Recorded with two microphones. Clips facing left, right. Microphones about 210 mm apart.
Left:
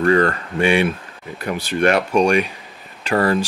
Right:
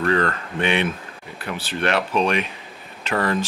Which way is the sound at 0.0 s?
5° left (ahead or behind).